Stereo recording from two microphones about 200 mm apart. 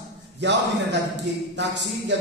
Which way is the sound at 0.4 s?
60° right (ahead or behind).